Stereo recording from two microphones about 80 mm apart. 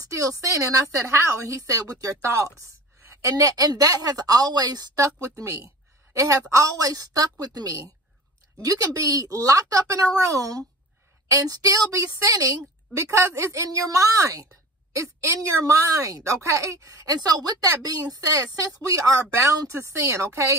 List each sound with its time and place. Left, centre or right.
0.1 s a woman's voice: right
1.6 s a woman's voice: right
19.7 s speech: right